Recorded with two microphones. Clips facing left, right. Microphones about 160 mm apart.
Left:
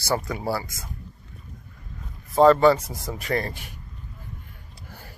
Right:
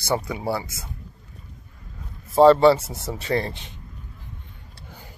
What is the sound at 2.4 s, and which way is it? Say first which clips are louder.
Speech: right 2 dB; 30° right (ahead or behind).